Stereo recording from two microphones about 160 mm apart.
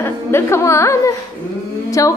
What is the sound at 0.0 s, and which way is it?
A woman's voice, 15° left (ahead or behind).